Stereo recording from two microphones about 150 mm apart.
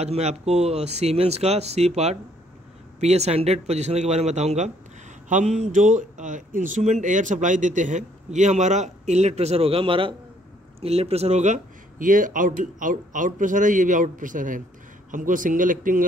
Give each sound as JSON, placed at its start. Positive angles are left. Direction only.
{"t": 0.0, "sound": "speech", "side_deg": -45}